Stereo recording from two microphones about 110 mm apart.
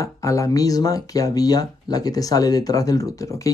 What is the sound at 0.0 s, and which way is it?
Speech, 30° left (ahead or behind).